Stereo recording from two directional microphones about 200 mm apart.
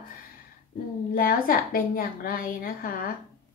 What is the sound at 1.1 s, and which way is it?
A woman's voice, 45° left (ahead or behind).